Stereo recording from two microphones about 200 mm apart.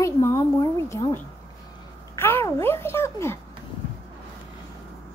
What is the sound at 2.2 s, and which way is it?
A child's voice, 10° left (ahead or behind).